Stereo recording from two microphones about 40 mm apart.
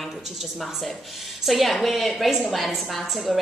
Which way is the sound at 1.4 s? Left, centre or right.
Centre.